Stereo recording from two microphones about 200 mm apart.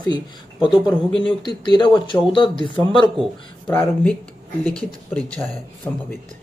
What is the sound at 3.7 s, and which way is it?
Speech, 10° left (ahead or behind).